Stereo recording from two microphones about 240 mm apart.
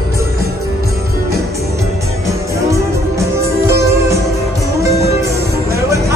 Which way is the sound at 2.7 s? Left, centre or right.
Centre.